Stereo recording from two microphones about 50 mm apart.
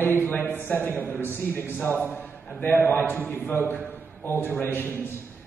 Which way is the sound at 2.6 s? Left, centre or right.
Left.